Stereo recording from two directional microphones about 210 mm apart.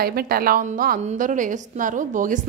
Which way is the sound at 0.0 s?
45° right (ahead or behind).